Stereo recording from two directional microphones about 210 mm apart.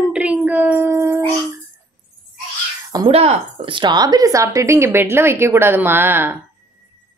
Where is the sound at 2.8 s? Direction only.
20° right (ahead or behind).